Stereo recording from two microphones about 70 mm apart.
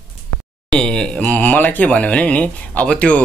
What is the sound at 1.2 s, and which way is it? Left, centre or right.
Speech, left.